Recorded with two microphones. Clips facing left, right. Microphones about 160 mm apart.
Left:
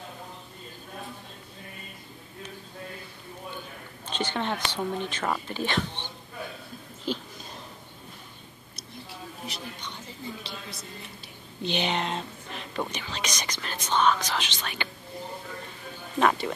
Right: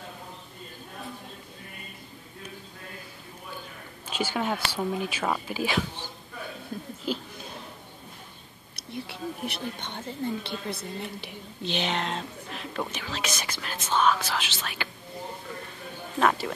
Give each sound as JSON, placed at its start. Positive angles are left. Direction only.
{"t": 4.1, "sound": "speech", "side_deg": -5}
{"t": 7.1, "sound": "speech", "side_deg": -5}
{"t": 8.7, "sound": "speech", "side_deg": -65}
{"t": 11.6, "sound": "speech", "side_deg": 0}
{"t": 16.2, "sound": "speech", "side_deg": 0}